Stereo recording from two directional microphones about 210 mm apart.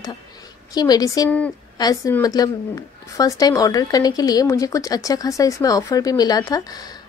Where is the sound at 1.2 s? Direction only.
5° left (ahead or behind).